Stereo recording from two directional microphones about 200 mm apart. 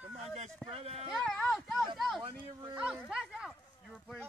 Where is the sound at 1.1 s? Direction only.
Centre (ahead or behind).